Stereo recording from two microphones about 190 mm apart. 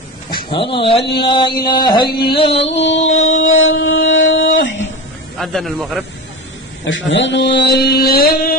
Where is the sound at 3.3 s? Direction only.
90° left.